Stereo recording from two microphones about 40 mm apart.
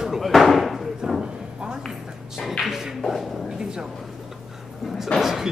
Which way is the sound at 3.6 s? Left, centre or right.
Right.